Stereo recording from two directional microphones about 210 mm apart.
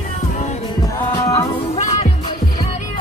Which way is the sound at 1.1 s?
15° left (ahead or behind).